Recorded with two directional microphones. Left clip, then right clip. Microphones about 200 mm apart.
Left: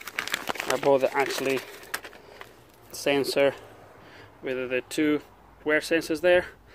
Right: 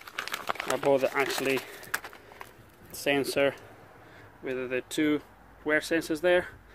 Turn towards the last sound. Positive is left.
turn(degrees=10)  # may be behind; listen again after turning